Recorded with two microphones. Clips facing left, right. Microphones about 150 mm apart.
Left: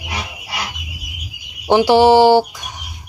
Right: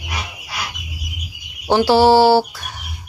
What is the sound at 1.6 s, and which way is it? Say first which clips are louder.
Speech: left 2 dB; 15° left (ahead or behind).